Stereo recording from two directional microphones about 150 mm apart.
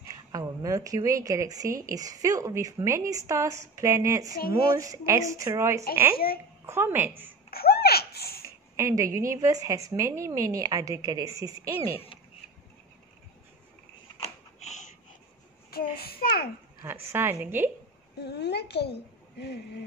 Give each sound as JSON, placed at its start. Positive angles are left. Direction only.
{"t": 0.1, "sound": "a woman's voice", "side_deg": -25}
{"t": 6.1, "sound": "a child's voice", "side_deg": 85}
{"t": 6.6, "sound": "a woman's voice", "side_deg": -15}
{"t": 7.5, "sound": "laughter", "side_deg": 90}
{"t": 8.7, "sound": "a woman's voice", "side_deg": -20}
{"t": 11.9, "sound": "speech", "side_deg": 40}
{"t": 14.6, "sound": "wheeze", "side_deg": 50}
{"t": 15.7, "sound": "child singing", "side_deg": 90}
{"t": 16.8, "sound": "a woman's voice", "side_deg": -15}
{"t": 18.2, "sound": "a child's voice", "side_deg": 90}